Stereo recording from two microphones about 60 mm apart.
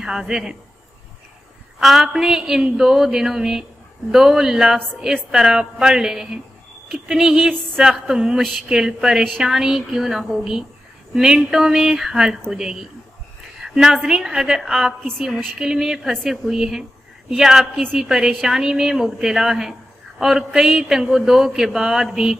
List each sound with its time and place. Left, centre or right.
0.0 s a man's voice: centre
1.8 s a man's voice: centre